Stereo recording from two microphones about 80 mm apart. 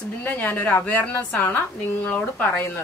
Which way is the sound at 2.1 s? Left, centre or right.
Centre.